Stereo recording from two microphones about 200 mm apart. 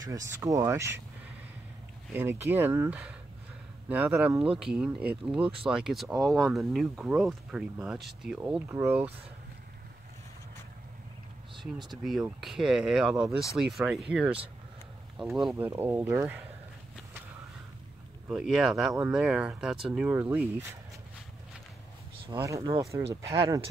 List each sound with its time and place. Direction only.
0.0 s speech: 15° right (ahead or behind)
2.1 s speech: 10° right (ahead or behind)
11.9 s speech: centre (ahead or behind)
15.5 s speech: 10° right (ahead or behind)
18.3 s speech: 5° right (ahead or behind)
22.3 s speech: 15° right (ahead or behind)